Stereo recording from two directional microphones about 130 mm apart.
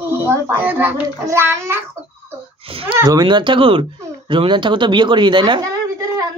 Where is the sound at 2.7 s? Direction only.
45° right (ahead or behind).